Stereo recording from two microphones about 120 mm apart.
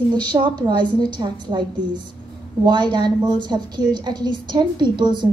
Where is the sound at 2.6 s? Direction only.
40° right (ahead or behind).